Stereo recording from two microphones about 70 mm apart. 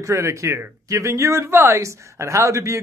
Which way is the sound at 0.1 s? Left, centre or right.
Right.